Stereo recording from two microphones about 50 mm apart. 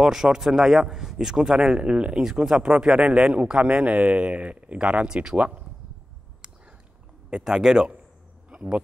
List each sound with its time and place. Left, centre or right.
0.0 s a man's voice: centre
7.2 s a man's voice: centre
8.5 s a sound: right